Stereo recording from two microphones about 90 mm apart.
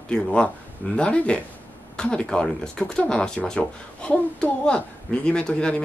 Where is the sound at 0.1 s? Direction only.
10° left (ahead or behind).